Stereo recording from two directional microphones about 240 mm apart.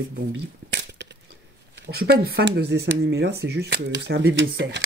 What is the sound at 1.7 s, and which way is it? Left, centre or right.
Speech, right.